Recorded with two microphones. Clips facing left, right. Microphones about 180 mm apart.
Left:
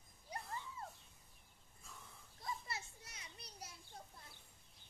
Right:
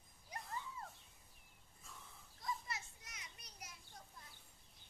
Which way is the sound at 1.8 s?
Centre (ahead or behind).